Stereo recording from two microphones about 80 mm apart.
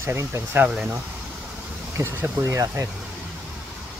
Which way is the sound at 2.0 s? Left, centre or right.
Right.